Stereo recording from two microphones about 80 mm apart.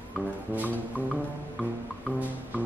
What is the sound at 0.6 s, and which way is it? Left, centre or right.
Music, right.